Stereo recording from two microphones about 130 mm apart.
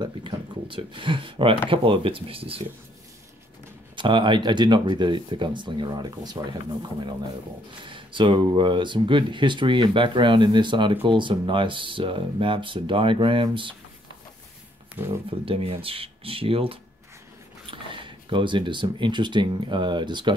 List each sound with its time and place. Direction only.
0.0 s speech: 40° right (ahead or behind)
3.9 s speech: 40° right (ahead or behind)
15.2 s speech: 45° right (ahead or behind)